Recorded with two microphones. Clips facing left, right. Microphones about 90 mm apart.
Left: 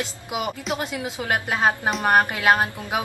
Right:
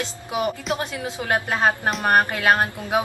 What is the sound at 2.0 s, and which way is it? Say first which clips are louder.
Speech: even; 15° left (ahead or behind).